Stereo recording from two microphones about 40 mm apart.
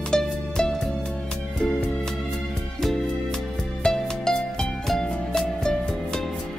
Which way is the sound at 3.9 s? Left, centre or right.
Centre.